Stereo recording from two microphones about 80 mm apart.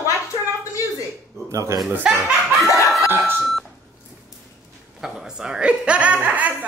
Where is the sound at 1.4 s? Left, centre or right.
Right.